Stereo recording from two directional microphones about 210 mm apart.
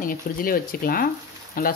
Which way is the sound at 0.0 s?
40° left (ahead or behind).